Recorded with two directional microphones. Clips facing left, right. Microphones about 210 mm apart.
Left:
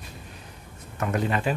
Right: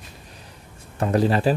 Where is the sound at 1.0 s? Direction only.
35° right (ahead or behind).